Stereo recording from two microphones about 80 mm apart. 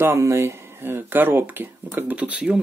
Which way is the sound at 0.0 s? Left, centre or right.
Right.